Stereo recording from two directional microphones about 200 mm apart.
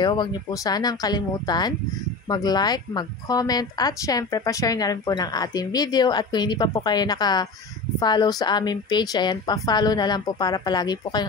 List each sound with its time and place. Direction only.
0.0 s speech: 20° left (ahead or behind)